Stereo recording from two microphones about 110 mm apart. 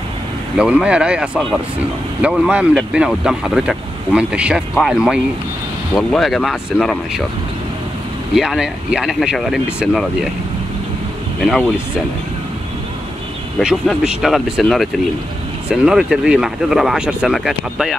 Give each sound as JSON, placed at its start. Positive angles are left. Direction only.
{"t": 0.6, "sound": "speech", "side_deg": -10}
{"t": 8.4, "sound": "speech", "side_deg": -5}
{"t": 11.4, "sound": "speech", "side_deg": 0}
{"t": 13.6, "sound": "speech", "side_deg": -5}